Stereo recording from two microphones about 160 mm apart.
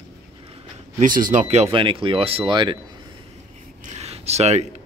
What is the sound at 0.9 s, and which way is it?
Speech, 55° right (ahead or behind).